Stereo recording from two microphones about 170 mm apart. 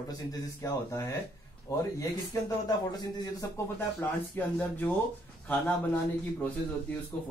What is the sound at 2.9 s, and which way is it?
Speech, 20° left (ahead or behind).